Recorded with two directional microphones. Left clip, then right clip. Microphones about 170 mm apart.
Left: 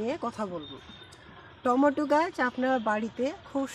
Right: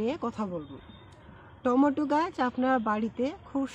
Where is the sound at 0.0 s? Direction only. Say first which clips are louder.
Even; 15° right (ahead or behind).